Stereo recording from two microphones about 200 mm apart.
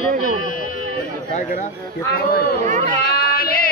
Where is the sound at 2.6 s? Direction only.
40° right (ahead or behind).